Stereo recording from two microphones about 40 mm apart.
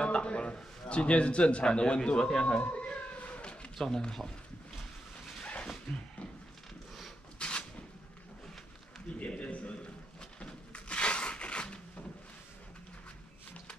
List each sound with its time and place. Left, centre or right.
0.0 s a man's voice: left
2.1 s speech: centre
2.6 s cat: left
3.7 s speech: centre
5.4 s dog: left
5.9 s speech: centre
7.3 s cupboard open or close: left
9.3 s a sound: left